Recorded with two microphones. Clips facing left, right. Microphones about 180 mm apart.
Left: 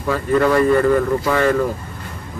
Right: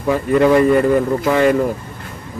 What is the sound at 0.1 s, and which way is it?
A man's voice, 20° right (ahead or behind).